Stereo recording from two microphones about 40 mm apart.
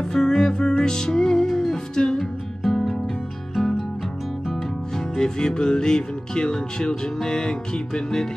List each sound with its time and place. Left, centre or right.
0.1 s music: centre
4.5 s music: centre